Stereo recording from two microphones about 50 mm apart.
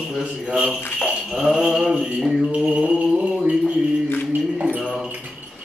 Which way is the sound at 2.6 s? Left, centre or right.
Right.